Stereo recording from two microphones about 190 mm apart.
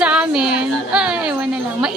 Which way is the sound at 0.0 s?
5° right (ahead or behind).